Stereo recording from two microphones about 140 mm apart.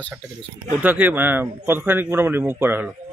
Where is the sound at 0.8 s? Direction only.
15° right (ahead or behind).